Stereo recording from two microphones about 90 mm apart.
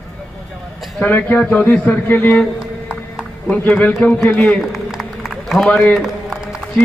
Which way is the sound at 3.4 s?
20° left (ahead or behind).